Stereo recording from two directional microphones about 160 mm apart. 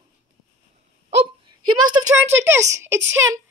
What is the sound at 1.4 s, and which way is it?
Speech, 25° right (ahead or behind).